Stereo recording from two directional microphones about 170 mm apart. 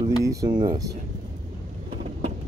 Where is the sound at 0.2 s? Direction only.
20° right (ahead or behind).